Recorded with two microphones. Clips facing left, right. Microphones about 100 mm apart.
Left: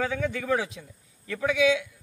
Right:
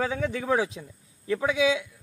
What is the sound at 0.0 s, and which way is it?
A man's voice, 30° right (ahead or behind).